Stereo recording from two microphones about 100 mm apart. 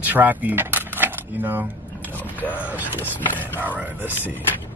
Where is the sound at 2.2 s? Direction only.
15° left (ahead or behind).